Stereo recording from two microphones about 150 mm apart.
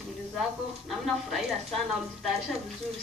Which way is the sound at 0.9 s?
Centre (ahead or behind).